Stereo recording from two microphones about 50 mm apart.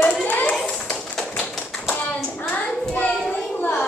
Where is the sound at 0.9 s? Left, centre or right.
Centre.